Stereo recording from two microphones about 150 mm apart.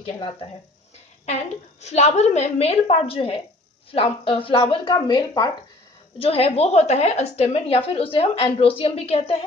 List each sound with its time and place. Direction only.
1.2 s a woman's voice: 45° left (ahead or behind); by 5.5 s 25° left (ahead or behind)
6.1 s a woman's voice: 40° left (ahead or behind)